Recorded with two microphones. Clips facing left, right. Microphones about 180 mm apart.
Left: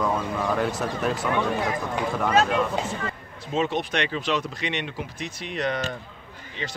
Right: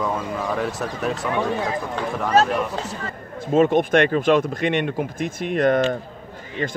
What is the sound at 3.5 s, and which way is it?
Speech, 50° right (ahead or behind).